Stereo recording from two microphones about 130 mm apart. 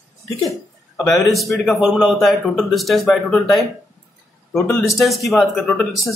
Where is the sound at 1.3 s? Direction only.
Centre (ahead or behind).